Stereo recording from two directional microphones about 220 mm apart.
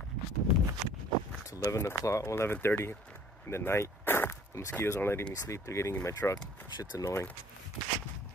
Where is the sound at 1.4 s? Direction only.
15° left (ahead or behind).